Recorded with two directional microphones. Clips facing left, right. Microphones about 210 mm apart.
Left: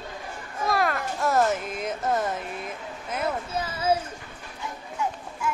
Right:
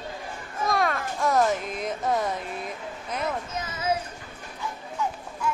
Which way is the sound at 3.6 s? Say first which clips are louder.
Left 5 dB; 30° left (ahead or behind).